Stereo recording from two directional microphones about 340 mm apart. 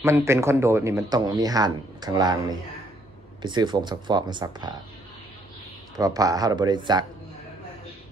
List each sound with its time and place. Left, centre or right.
0.0 s speech: centre
5.9 s speech: centre